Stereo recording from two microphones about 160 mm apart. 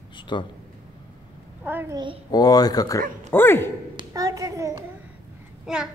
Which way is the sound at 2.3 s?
25° left (ahead or behind).